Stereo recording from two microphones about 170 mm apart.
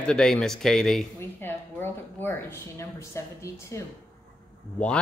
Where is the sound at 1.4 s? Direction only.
10° left (ahead or behind).